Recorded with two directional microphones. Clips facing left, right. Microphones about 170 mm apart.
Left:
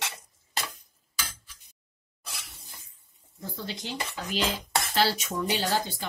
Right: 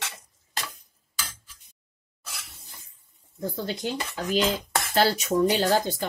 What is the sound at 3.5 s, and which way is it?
Speech, 50° right (ahead or behind).